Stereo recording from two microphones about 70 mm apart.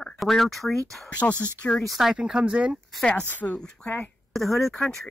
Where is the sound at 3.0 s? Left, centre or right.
Centre.